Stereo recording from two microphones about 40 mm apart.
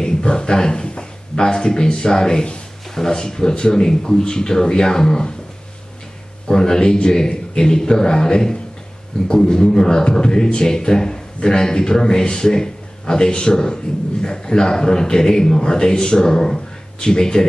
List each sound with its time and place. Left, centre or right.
0.0 s a man's voice: left
6.4 s a man's voice: centre